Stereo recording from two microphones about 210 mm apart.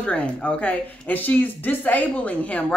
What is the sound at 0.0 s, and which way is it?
Speech, 5° left (ahead or behind).